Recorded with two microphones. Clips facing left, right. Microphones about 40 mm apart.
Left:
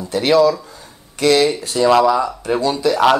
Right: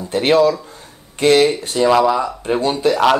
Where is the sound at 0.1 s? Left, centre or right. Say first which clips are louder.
Even; right.